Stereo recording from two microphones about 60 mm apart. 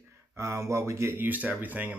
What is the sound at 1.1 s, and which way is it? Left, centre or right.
Speech, right.